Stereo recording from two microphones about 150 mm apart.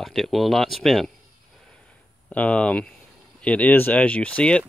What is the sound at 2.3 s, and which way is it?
Speech, 10° left (ahead or behind).